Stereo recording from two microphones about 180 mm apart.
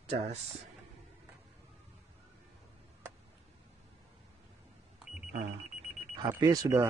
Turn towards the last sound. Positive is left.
turn(degrees=-20)  # may be behind; listen again after turning